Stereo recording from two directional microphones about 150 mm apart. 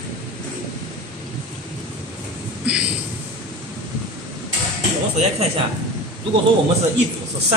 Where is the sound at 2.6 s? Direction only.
5° right (ahead or behind).